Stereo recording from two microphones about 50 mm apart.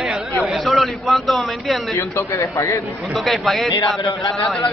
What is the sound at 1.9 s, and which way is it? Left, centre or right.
Speech, left.